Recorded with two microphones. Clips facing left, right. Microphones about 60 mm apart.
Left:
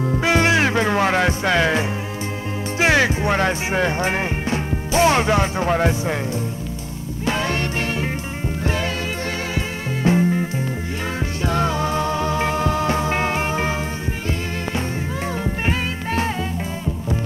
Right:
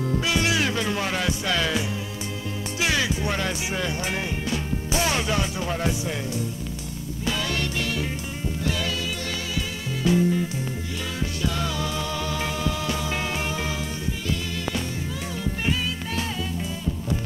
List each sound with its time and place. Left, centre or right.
0.0 s music: left
2.8 s speech: left
7.2 s music: left
10.0 s music: left
15.4 s music: left